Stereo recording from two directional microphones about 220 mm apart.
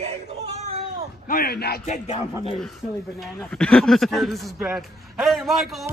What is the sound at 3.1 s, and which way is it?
A man's voice, centre (ahead or behind).